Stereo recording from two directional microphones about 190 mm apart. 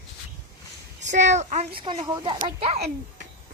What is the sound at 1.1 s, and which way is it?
Speech, 40° right (ahead or behind).